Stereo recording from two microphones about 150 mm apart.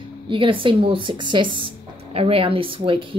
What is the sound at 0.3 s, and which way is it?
A woman's voice, 35° right (ahead or behind).